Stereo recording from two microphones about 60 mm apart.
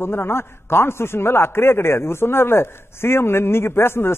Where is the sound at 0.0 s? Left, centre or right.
Left.